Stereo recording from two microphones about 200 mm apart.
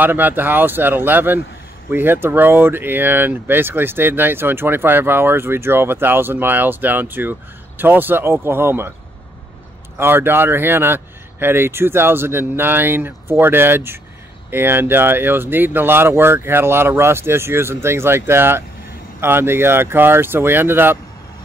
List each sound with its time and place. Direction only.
0.0 s speech: 10° right (ahead or behind)
9.9 s speech: 10° right (ahead or behind)